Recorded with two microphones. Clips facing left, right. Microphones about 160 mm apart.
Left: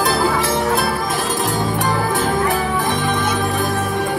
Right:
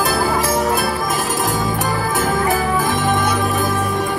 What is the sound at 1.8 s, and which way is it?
Music, 45° right (ahead or behind).